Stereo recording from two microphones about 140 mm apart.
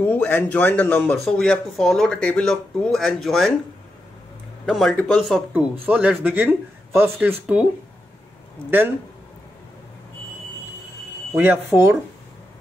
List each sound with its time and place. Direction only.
0.1 s speech: 15° left (ahead or behind)
4.6 s speech: centre (ahead or behind)
5.5 s speech: 10° right (ahead or behind)
8.6 s speech: 15° right (ahead or behind)
11.3 s speech: 15° right (ahead or behind)